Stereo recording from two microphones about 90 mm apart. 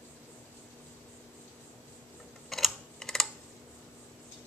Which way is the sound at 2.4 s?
5° left (ahead or behind).